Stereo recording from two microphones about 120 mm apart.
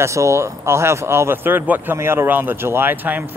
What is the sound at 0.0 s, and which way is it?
Speech, 25° right (ahead or behind).